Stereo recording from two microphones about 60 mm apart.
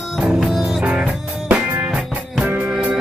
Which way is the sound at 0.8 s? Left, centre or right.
Centre.